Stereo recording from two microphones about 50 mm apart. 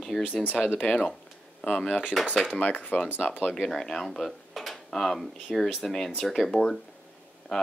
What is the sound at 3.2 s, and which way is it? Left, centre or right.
Speech, centre.